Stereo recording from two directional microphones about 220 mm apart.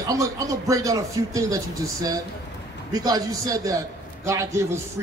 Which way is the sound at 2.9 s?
15° right (ahead or behind).